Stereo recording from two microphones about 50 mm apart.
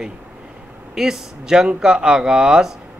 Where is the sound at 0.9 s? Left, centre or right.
Centre.